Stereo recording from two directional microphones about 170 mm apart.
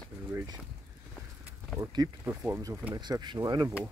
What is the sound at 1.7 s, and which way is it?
Speech, 20° right (ahead or behind).